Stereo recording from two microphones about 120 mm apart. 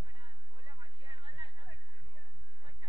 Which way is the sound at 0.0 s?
40° right (ahead or behind).